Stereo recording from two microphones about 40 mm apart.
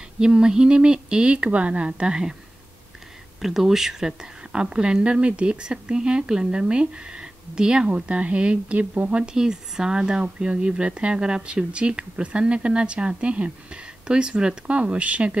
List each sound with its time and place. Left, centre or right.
0.2 s speech: right
3.3 s speech: centre
7.9 s a woman's voice: right
9.1 s speech: right